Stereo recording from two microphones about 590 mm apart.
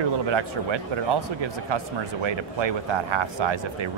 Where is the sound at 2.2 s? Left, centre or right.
Right.